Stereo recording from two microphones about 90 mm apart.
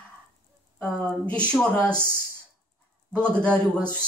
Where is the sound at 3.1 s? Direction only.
10° left (ahead or behind).